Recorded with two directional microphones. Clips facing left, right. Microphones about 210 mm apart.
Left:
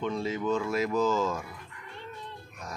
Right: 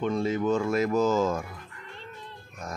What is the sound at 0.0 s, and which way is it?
Cutlery, 50° right (ahead or behind).